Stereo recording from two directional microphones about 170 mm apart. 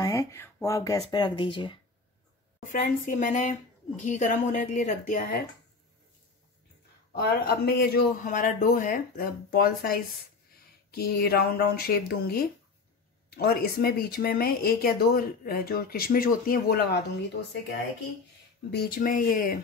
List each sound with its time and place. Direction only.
0.0 s speech: 20° left (ahead or behind)
2.7 s speech: 50° left (ahead or behind)
7.2 s speech: 70° left (ahead or behind); by 17.6 s 90° left
18.7 s speech: 65° left (ahead or behind)